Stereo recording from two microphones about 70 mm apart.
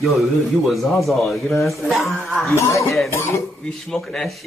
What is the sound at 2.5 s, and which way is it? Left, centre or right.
Speech, left.